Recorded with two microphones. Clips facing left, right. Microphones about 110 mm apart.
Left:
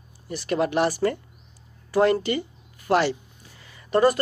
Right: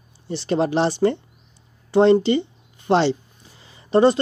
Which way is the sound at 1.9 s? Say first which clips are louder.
Right 6 dB; 25° right (ahead or behind).